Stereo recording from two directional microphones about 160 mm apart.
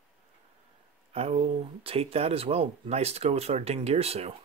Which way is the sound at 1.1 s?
40° right (ahead or behind).